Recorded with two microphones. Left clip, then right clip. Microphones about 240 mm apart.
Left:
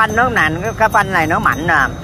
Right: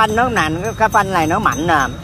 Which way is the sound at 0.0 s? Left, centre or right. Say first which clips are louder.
Left 2 dB; right.